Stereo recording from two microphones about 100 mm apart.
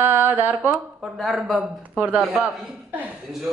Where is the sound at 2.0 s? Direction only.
10° right (ahead or behind).